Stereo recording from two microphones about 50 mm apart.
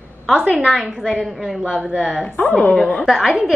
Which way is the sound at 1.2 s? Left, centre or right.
Centre.